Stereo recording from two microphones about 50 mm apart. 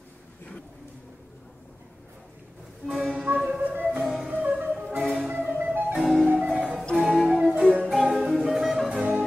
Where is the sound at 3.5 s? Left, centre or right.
Right.